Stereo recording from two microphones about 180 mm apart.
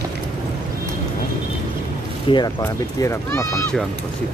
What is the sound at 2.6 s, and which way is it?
Speech, 15° left (ahead or behind).